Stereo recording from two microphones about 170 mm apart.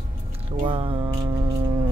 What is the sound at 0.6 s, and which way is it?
Music, 30° right (ahead or behind).